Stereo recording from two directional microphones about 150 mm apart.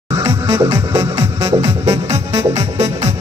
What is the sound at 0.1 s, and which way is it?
Music, 20° right (ahead or behind).